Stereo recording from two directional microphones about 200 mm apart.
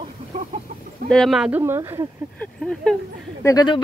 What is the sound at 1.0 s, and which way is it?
Speech, centre (ahead or behind).